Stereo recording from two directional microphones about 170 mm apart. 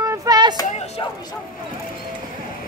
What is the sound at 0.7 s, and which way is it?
Speech, 40° left (ahead or behind).